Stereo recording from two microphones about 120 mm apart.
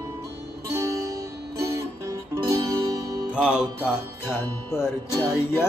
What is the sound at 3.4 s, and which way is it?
Music, 5° right (ahead or behind).